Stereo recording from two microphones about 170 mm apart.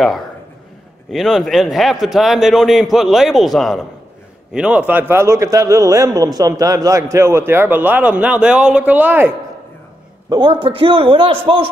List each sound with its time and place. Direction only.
1.1 s a man's voice: centre (ahead or behind)
10.3 s a man's voice: 25° right (ahead or behind)